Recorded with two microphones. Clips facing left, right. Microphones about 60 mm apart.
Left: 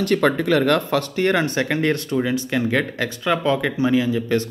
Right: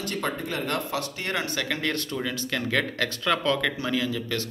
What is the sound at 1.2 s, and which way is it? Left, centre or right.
Speech, left.